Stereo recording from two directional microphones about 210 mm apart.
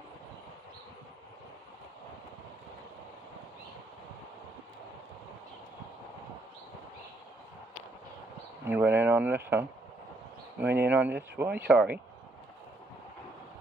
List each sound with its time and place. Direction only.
8.6 s speech: 10° right (ahead or behind)